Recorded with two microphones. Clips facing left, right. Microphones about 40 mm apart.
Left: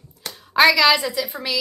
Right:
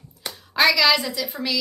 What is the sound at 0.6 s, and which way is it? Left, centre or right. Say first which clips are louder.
A woman's voice: left 3 dB; centre.